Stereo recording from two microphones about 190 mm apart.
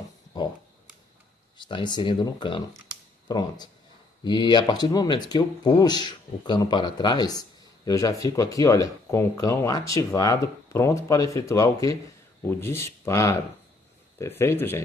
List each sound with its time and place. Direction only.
1.6 s speech: 25° left (ahead or behind)